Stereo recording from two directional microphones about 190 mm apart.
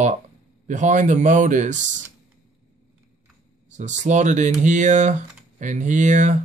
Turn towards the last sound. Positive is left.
turn(degrees=-40)  # may be behind; listen again after turning